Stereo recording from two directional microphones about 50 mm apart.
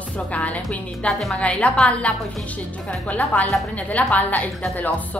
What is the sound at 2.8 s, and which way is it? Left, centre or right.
A woman's voice, left.